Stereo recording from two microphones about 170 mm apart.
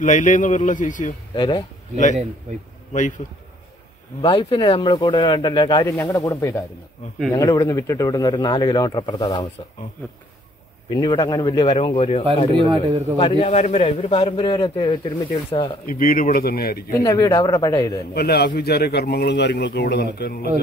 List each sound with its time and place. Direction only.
0.0 s a man's voice: 50° left (ahead or behind)
1.3 s speech: 30° left (ahead or behind)
2.9 s a man's voice: 45° left (ahead or behind)
4.2 s speech: 30° left (ahead or behind)
10.9 s speech: 30° left (ahead or behind)
11.6 s a man's voice: 35° left (ahead or behind)
12.5 s speech: 30° right (ahead or behind)
13.2 s a man's voice: 35° left (ahead or behind)
15.9 s speech: 55° left (ahead or behind)
17.0 s speech: 20° left (ahead or behind)
18.1 s speech: 70° left (ahead or behind)